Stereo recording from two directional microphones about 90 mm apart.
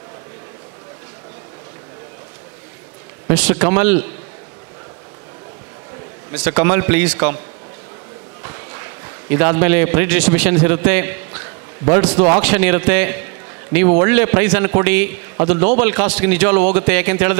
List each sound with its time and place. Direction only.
3.3 s a man's voice: 20° right (ahead or behind)
6.3 s a man's voice: 20° right (ahead or behind)